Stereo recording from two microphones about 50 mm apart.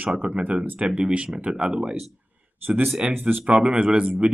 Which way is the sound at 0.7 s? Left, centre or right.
Centre.